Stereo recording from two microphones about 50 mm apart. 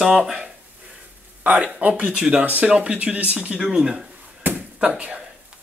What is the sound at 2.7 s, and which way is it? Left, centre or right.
Speech, right.